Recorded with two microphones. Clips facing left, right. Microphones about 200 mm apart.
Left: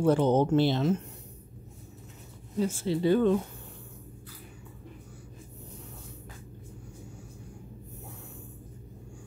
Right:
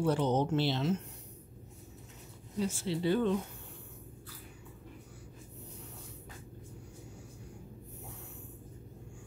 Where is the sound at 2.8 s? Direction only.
45° left (ahead or behind).